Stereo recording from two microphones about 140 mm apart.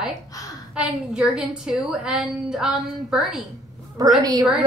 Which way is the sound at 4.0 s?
25° right (ahead or behind).